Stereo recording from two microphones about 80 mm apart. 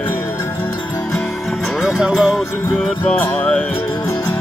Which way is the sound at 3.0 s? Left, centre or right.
Centre.